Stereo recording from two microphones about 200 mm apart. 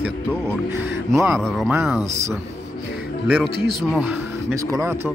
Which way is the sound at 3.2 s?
5° right (ahead or behind).